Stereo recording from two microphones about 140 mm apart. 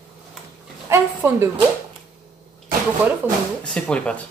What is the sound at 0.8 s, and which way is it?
Speech, 20° right (ahead or behind).